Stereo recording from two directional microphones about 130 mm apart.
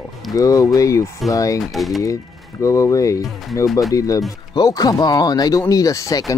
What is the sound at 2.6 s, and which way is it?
Speech, 25° left (ahead or behind).